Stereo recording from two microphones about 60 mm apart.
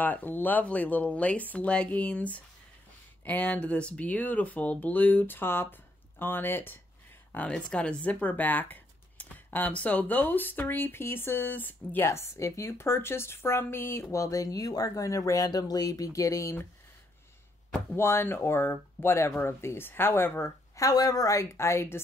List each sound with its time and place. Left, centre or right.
0.0 s speech: left
7.3 s speech: left
12.1 s speech: left
14.1 s speech: left
17.9 s speech: left
20.4 s speech: left
21.5 s speech: left